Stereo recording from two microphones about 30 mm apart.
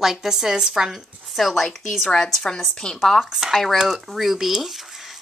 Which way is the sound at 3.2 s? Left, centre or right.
Centre.